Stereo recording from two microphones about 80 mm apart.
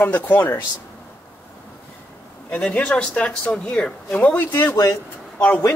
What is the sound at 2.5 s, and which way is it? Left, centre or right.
Speech, centre.